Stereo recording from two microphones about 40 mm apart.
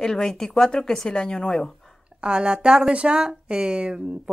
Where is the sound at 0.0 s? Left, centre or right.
Centre.